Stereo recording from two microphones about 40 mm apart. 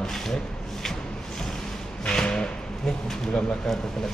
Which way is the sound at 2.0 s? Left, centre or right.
Left.